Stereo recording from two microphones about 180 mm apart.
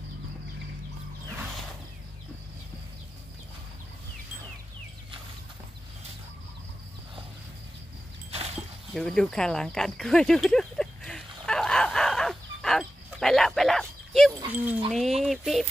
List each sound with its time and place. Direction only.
8.9 s cricket: 5° left (ahead or behind)
14.5 s dog: 10° right (ahead or behind)
14.9 s a sound: centre (ahead or behind)